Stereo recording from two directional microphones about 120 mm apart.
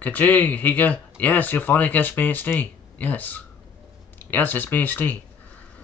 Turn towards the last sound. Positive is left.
turn(degrees=15)  # may be behind; listen again after turning